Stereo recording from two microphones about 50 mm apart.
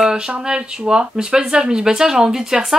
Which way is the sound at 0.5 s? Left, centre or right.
Centre.